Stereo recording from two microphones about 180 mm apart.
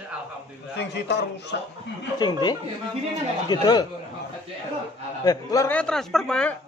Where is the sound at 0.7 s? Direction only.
70° left (ahead or behind).